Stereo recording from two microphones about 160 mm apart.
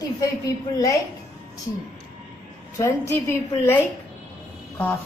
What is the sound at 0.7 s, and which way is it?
Speech, 20° left (ahead or behind).